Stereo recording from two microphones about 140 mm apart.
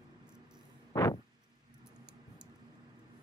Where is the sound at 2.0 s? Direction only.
5° right (ahead or behind).